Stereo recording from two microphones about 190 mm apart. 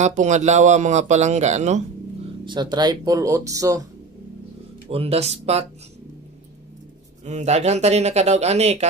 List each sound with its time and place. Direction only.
0.0 s speech: 40° right (ahead or behind)
2.4 s speech: 25° right (ahead or behind)
4.8 s speech: 30° right (ahead or behind)
7.2 s speech: 35° right (ahead or behind)